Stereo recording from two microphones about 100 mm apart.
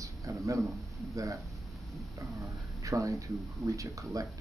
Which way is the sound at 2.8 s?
30° right (ahead or behind).